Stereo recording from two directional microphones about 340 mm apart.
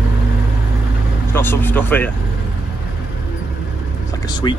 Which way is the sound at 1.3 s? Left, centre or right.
Centre.